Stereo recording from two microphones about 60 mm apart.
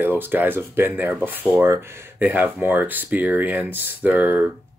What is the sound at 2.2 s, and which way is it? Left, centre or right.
Speech, right.